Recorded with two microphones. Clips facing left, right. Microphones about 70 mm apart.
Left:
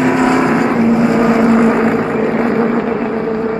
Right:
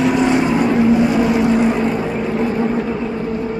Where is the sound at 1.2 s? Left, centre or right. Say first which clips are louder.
Left 4 dB; left.